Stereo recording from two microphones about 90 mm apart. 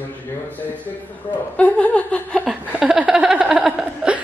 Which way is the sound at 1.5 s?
15° left (ahead or behind).